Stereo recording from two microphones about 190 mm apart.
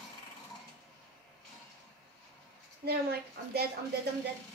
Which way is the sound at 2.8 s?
55° right (ahead or behind).